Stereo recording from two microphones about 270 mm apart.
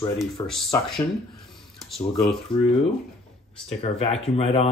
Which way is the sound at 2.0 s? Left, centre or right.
Centre.